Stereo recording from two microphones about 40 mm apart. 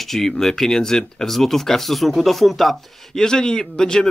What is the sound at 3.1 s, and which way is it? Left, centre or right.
Speech, centre.